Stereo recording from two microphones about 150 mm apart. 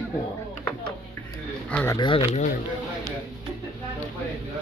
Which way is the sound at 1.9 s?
30° left (ahead or behind).